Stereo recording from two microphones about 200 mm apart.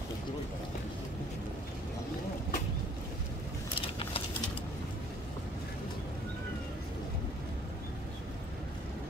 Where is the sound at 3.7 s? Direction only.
25° left (ahead or behind).